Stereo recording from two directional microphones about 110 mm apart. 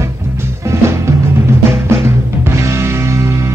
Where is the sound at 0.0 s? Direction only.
25° right (ahead or behind).